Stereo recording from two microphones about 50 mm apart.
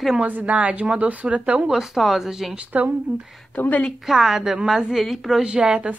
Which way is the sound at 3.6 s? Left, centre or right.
Left.